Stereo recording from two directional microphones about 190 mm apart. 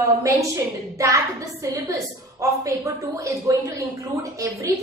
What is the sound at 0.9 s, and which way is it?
A woman's voice, 15° right (ahead or behind).